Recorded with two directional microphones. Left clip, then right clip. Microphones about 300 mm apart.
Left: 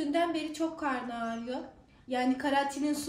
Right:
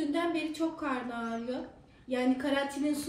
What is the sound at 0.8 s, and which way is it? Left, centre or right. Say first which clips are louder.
A woman's voice: left 1 dB; centre.